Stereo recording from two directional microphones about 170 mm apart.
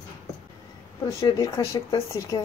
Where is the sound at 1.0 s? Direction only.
25° left (ahead or behind).